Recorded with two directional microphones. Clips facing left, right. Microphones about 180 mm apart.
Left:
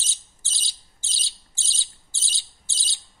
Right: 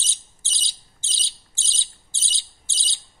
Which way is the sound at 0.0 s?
20° right (ahead or behind).